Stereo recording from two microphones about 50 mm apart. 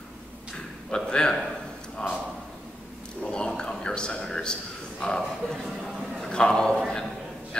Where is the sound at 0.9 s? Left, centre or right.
Centre.